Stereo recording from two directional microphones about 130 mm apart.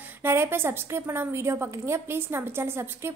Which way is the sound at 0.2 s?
20° right (ahead or behind).